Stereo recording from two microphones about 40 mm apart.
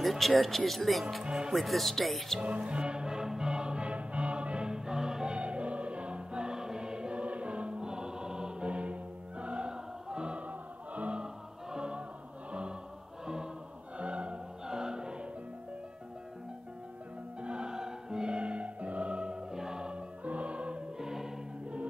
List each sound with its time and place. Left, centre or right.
0.0 s speech: centre
1.2 s music: right
1.5 s speech: centre
2.4 s music: right
8.6 s music: right
10.4 s music: right
11.7 s music: right
13.9 s music: right
14.7 s music: centre
17.4 s music: right
19.9 s music: right
21.0 s music: centre